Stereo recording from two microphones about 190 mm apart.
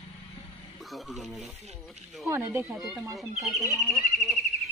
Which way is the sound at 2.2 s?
15° right (ahead or behind).